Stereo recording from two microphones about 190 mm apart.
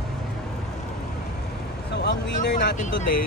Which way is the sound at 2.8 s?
50° left (ahead or behind).